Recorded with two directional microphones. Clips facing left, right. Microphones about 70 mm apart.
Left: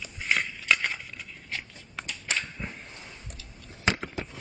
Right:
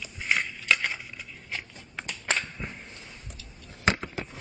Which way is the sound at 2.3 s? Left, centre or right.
Centre.